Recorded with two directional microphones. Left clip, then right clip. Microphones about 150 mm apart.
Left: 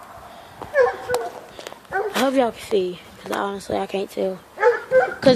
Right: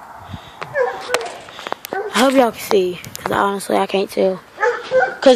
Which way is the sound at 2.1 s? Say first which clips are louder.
Right 7 dB; 70° right (ahead or behind).